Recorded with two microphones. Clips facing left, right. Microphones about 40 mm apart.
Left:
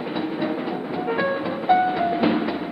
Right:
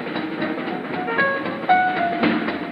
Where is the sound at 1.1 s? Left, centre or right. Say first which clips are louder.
Right 4 dB; centre.